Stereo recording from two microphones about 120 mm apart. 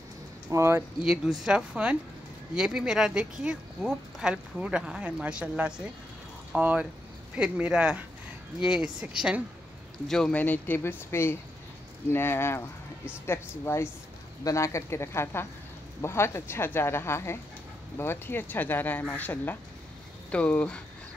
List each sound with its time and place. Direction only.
0.5 s speech: 25° right (ahead or behind)
1.4 s speech: 10° right (ahead or behind)
10.0 s speech: 5° left (ahead or behind)